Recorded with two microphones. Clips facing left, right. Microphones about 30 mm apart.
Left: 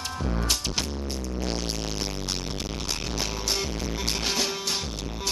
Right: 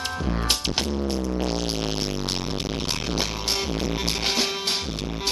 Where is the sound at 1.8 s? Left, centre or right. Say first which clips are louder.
Right 5 dB; right.